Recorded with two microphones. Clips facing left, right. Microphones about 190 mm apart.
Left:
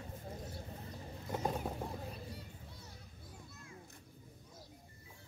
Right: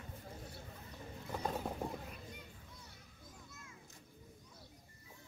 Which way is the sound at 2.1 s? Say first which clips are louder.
Left 4 dB; 35° left (ahead or behind).